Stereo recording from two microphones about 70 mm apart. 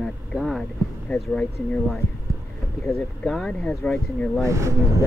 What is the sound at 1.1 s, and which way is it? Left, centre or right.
Speech, centre.